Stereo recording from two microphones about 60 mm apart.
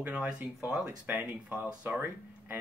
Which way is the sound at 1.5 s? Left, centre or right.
Centre.